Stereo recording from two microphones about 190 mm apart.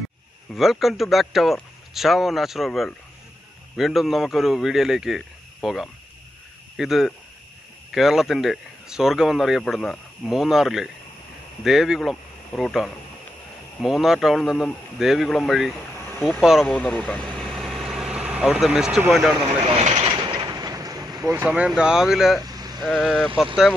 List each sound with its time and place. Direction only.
0.5 s speech: centre (ahead or behind)
16.1 s vehicle: 10° left (ahead or behind)
16.3 s speech: centre (ahead or behind)
16.7 s vehicle: 5° left (ahead or behind)
19.8 s vehicle: 35° right (ahead or behind)
20.1 s vehicle: 25° right (ahead or behind); by 22.4 s centre (ahead or behind)
22.4 s vehicle: 20° right (ahead or behind)
22.8 s speech: centre (ahead or behind)